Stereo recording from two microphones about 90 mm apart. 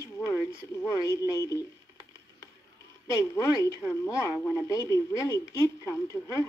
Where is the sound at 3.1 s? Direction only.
35° left (ahead or behind).